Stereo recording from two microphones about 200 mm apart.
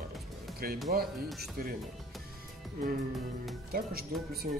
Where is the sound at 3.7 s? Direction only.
50° right (ahead or behind).